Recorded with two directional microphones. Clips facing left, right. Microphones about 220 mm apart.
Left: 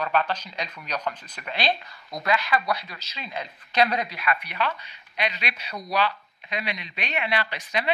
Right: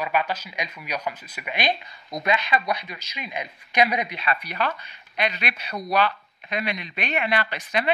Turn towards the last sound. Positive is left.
turn(degrees=-55)  # may be behind; listen again after turning